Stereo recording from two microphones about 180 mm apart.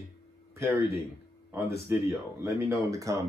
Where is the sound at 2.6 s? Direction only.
15° right (ahead or behind).